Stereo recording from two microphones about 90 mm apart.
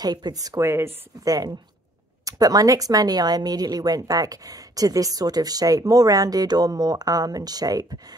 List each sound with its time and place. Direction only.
0.0 s speech: 50° right (ahead or behind)
0.6 s speech: 30° right (ahead or behind)
1.2 s speech: 45° right (ahead or behind)